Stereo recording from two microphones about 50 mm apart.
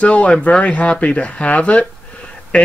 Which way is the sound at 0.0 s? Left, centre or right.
Left.